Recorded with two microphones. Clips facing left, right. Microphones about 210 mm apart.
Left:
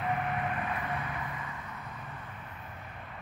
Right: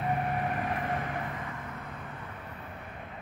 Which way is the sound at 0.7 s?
45° right (ahead or behind).